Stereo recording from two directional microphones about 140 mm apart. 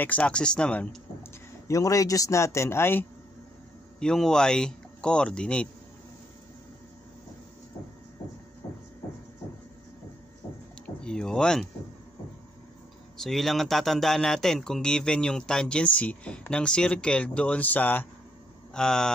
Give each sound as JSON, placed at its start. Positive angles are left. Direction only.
{"t": 0.0, "sound": "speech", "side_deg": 10}
{"t": 1.7, "sound": "speech", "side_deg": 25}
{"t": 4.0, "sound": "speech", "side_deg": 5}
{"t": 11.0, "sound": "a sound", "side_deg": 5}
{"t": 13.2, "sound": "speech", "side_deg": 0}